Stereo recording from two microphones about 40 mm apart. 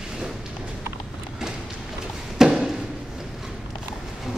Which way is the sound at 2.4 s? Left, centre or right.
Centre.